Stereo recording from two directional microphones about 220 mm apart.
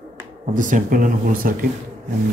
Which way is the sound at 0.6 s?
35° right (ahead or behind).